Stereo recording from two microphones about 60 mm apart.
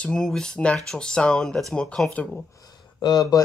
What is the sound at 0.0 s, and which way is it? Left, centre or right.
Speech, centre.